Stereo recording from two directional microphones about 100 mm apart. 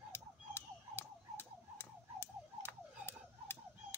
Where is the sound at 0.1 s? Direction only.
20° left (ahead or behind).